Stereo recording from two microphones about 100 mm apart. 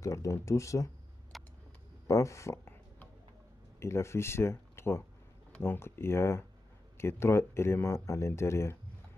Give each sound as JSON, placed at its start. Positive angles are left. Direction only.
{"t": 0.0, "sound": "speech", "side_deg": 30}
{"t": 1.3, "sound": "a sound", "side_deg": 0}
{"t": 2.0, "sound": "speech", "side_deg": 30}
{"t": 3.8, "sound": "speech", "side_deg": 25}